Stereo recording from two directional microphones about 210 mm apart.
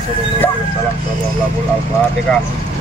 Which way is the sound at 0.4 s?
10° left (ahead or behind).